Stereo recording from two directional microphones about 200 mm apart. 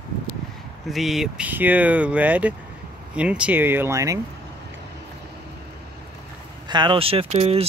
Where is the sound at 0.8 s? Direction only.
Centre (ahead or behind).